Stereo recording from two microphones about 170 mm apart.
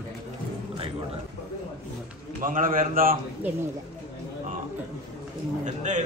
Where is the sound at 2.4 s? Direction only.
55° right (ahead or behind).